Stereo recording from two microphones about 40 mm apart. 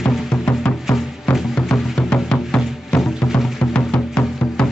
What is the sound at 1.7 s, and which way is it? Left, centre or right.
Music, centre.